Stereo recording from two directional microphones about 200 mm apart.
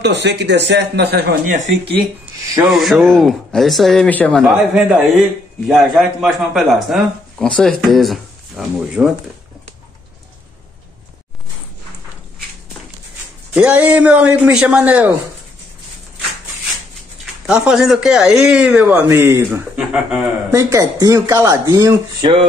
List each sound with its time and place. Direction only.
0.0 s speech: 60° right (ahead or behind); by 1.7 s 40° right (ahead or behind)
2.6 s a man's voice: centre (ahead or behind)
13.5 s a man's voice: 5° right (ahead or behind)
17.5 s a man's voice: 5° right (ahead or behind)
20.5 s speech: 15° right (ahead or behind)